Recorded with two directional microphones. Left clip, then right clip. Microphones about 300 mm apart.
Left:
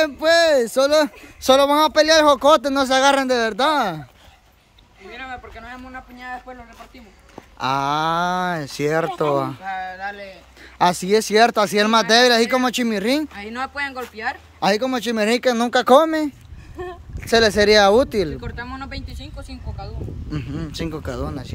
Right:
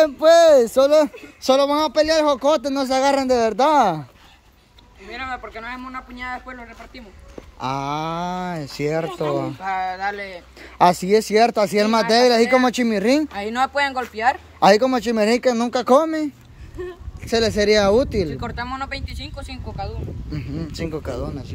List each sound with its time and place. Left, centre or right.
0.0 s speech: centre
5.1 s speech: centre
7.5 s speech: centre
9.6 s speech: centre
10.6 s speech: centre
13.3 s speech: centre
14.6 s speech: centre
18.4 s speech: centre
20.2 s speech: centre